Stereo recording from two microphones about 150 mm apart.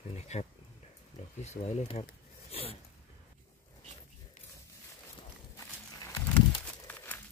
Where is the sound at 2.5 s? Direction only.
40° left (ahead or behind).